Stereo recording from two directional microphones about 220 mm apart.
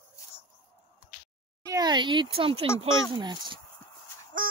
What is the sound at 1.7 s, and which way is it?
Speech, 20° right (ahead or behind).